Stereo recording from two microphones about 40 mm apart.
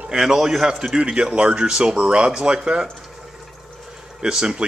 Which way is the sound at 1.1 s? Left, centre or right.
Right.